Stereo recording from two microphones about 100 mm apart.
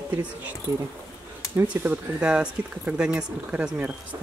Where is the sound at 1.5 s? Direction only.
15° right (ahead or behind).